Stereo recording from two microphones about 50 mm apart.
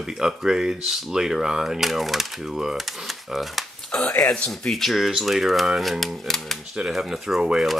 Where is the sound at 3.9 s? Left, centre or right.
Centre.